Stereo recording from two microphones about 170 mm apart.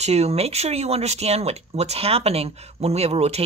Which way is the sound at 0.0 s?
40° right (ahead or behind).